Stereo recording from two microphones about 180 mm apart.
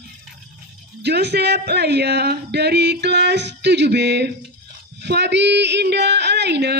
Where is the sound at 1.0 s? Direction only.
65° right (ahead or behind).